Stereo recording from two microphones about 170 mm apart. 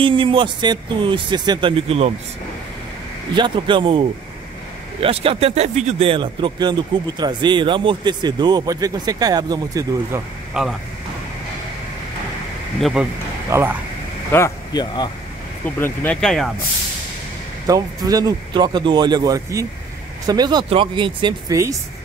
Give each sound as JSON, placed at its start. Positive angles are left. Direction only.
{"t": 0.0, "sound": "a man's voice", "side_deg": -30}
{"t": 3.3, "sound": "a man's voice", "side_deg": -30}
{"t": 10.6, "sound": "speech", "side_deg": -5}
{"t": 13.5, "sound": "speech", "side_deg": -15}
{"t": 14.3, "sound": "speech", "side_deg": 20}
{"t": 15.8, "sound": "speech", "side_deg": 10}
{"t": 17.6, "sound": "a man's voice", "side_deg": -20}